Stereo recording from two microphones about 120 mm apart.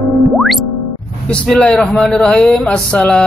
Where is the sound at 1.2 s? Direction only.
5° left (ahead or behind).